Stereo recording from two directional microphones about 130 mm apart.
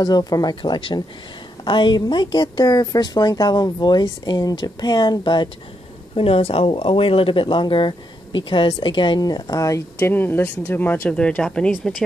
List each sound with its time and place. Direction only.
0.0 s speech: 30° left (ahead or behind)
6.1 s speech: 50° left (ahead or behind); by 11.9 s 5° left (ahead or behind)